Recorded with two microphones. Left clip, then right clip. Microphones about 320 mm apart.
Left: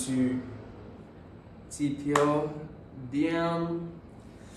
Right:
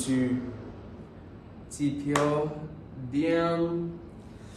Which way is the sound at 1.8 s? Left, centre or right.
Centre.